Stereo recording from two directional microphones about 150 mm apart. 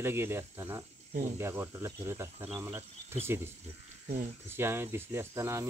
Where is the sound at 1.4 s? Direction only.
15° right (ahead or behind).